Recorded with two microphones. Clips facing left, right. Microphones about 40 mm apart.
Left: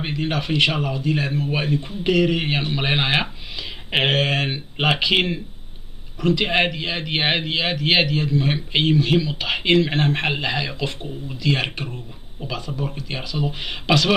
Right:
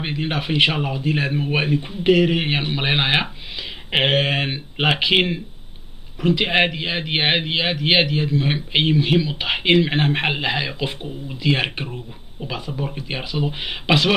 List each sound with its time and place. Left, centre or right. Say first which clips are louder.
0.0 s a man's voice: even; centre